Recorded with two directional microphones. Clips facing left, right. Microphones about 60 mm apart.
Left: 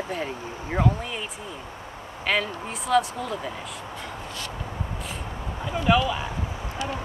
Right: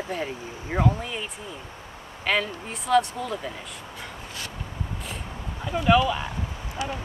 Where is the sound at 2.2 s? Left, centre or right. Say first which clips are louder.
Even; centre.